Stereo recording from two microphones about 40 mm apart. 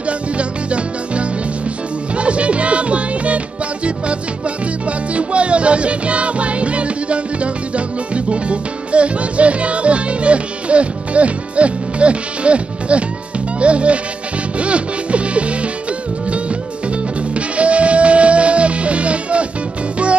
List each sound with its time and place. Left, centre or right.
0.4 s music: right
4.8 s music: right
17.6 s music: right